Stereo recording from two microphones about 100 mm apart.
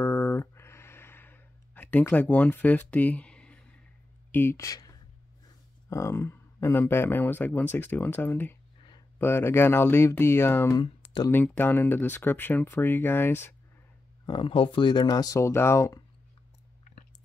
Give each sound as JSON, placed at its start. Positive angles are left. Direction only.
{"t": 0.0, "sound": "a sound", "side_deg": 25}
{"t": 4.3, "sound": "speech", "side_deg": 25}
{"t": 4.6, "sound": "speech", "side_deg": 35}
{"t": 14.2, "sound": "speech", "side_deg": 55}